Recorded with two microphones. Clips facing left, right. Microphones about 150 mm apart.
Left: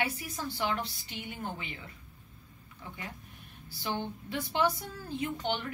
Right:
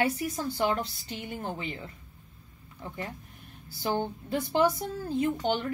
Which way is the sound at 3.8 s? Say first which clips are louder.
Right 6 dB; 40° right (ahead or behind).